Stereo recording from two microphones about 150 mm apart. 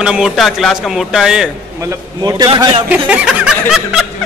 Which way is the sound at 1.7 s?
20° right (ahead or behind).